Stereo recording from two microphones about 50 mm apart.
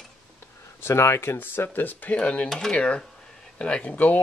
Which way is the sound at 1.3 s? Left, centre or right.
Left.